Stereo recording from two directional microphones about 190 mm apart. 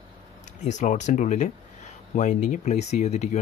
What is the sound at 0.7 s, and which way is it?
Speech, 40° left (ahead or behind).